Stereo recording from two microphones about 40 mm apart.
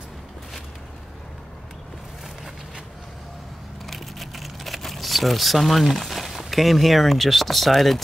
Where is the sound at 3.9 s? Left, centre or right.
Centre.